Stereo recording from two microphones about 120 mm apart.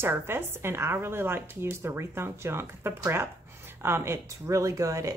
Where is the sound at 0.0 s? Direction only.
20° right (ahead or behind).